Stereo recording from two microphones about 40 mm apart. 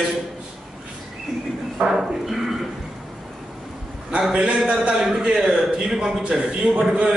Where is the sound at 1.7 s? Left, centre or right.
Centre.